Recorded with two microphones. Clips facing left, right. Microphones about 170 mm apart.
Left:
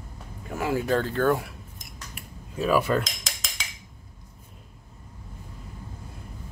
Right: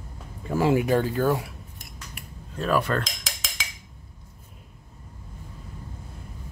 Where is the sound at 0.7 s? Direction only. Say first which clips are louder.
Left 1 dB; 15° right (ahead or behind).